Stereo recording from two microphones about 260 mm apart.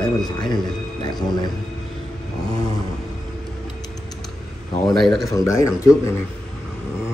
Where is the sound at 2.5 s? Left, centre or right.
Centre.